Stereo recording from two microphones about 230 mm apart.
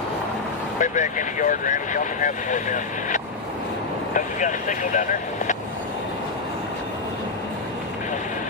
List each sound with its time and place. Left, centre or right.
0.7 s speech: left